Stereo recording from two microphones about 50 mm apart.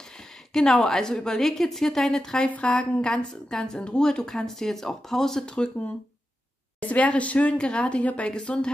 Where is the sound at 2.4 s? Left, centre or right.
Left.